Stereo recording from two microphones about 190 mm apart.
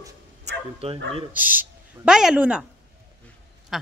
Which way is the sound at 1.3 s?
10° right (ahead or behind).